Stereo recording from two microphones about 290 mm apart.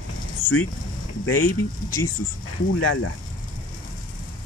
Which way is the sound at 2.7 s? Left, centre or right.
Left.